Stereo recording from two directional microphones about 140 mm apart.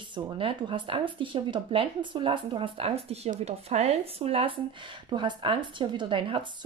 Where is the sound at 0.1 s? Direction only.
40° right (ahead or behind).